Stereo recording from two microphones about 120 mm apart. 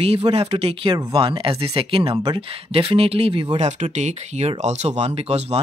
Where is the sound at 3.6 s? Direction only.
70° right (ahead or behind).